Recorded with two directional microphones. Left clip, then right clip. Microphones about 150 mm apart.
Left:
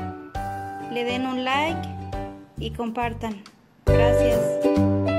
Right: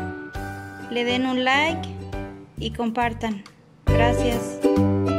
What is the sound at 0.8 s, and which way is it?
Speech, 5° left (ahead or behind).